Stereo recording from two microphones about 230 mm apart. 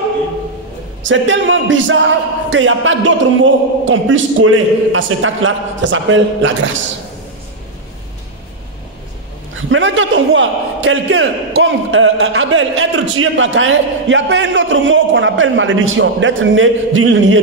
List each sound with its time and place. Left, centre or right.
1.0 s a man's voice: right
9.6 s a man's voice: right